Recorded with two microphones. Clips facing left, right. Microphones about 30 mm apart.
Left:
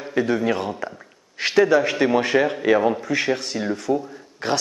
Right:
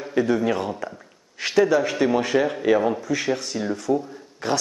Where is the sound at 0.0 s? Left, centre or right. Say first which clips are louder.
Even; centre.